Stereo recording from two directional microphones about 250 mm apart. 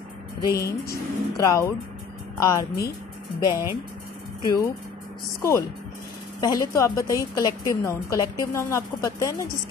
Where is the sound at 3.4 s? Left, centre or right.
Centre.